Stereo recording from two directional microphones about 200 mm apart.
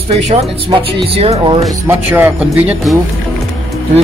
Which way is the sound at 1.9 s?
10° right (ahead or behind).